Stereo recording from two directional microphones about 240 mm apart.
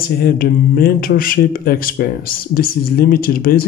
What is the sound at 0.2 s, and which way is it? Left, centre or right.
Speech, left.